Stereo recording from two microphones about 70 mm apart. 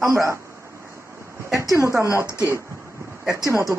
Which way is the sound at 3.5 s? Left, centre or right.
Right.